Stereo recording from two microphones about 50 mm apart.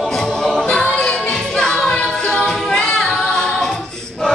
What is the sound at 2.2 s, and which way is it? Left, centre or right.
A capella, centre.